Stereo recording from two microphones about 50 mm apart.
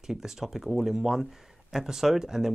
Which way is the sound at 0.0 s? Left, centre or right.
Centre.